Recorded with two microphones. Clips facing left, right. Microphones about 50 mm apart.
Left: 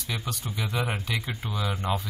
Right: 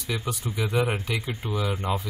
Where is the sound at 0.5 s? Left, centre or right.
Centre.